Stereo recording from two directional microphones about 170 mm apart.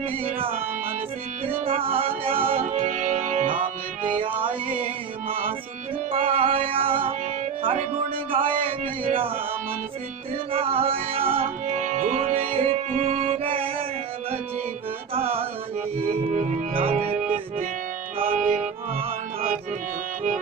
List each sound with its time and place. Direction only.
1.7 s music: 35° right (ahead or behind)
2.6 s music: 45° right (ahead or behind)
4.1 s music: 30° right (ahead or behind)
6.1 s speech: 35° right (ahead or behind)
8.3 s speech: 35° right (ahead or behind)
10.5 s speech: 35° right (ahead or behind)
11.4 s music: 45° right (ahead or behind)
15.1 s music: 35° right (ahead or behind)